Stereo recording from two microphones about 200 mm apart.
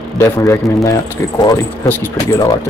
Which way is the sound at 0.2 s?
15° left (ahead or behind).